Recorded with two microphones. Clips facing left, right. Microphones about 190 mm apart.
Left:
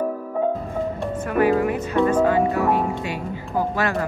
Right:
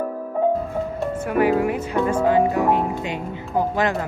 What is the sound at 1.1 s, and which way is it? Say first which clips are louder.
Speech: even; 10° right (ahead or behind).